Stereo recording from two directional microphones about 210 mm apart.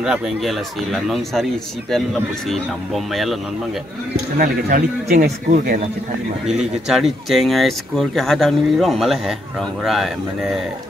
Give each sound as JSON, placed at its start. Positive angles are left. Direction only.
{"t": 0.0, "sound": "speech", "side_deg": 0}
{"t": 4.4, "sound": "speech", "side_deg": -45}
{"t": 6.4, "sound": "speech", "side_deg": 0}